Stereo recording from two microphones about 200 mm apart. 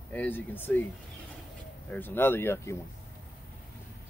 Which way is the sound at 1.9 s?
10° left (ahead or behind).